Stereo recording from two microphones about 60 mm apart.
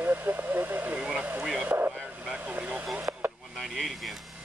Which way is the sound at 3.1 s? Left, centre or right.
Right.